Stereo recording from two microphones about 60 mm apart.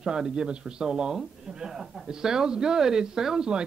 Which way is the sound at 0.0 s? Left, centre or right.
Centre.